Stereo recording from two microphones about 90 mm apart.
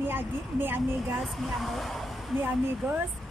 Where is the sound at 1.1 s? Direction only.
Centre (ahead or behind).